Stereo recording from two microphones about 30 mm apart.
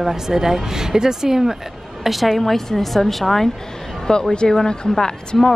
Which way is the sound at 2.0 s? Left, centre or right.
Centre.